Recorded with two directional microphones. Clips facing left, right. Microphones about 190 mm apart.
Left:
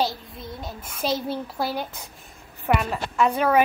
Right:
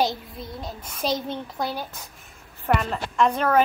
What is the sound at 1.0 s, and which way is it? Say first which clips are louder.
A child's voice: left 1 dB; 5° left (ahead or behind).